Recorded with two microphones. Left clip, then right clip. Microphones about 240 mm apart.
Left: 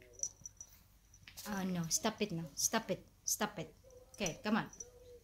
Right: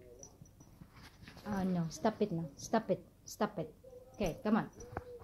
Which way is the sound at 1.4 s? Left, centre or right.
Left.